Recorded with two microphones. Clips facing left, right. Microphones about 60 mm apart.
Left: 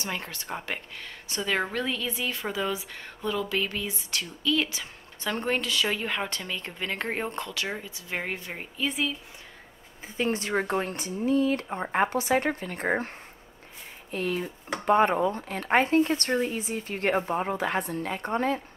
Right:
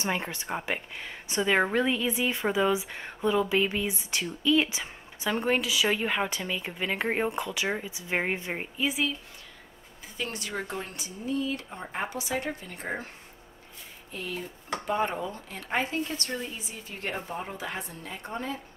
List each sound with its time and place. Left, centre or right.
0.0 s speech: right
5.3 s speech: centre
8.7 s speech: centre
10.0 s a woman's voice: left
14.1 s a woman's voice: left